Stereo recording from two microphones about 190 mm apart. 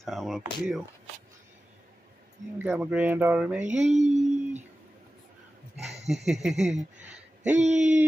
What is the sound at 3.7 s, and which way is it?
Mantra, 35° right (ahead or behind).